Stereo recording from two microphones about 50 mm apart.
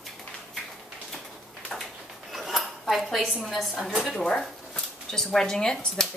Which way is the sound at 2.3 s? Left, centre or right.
Centre.